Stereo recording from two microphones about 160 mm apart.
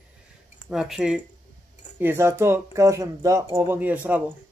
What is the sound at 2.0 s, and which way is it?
Speech, 15° right (ahead or behind).